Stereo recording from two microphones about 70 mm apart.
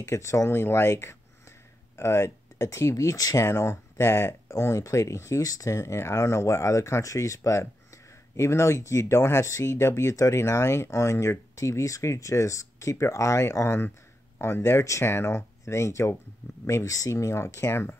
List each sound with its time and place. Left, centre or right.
0.0 s speech: left
3.4 s speech: left
5.4 s speech: left